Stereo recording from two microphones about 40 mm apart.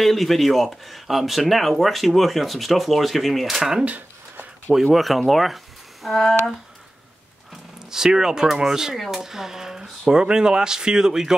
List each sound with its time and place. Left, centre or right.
0.0 s speech: centre
3.8 s a sound: right
4.9 s speech: centre
6.0 s speech: centre
7.9 s speech: centre
8.9 s speech: centre
9.2 s speech: centre